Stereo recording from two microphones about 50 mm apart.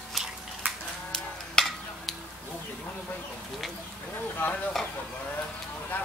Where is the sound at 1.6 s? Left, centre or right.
Centre.